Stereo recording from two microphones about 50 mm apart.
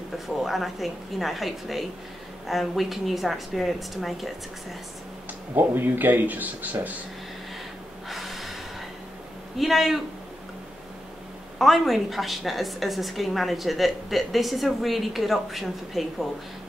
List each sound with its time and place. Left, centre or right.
0.4 s a woman's voice: centre
5.6 s speech: right
8.1 s snort: centre
9.6 s a woman's voice: centre
11.5 s a woman's voice: centre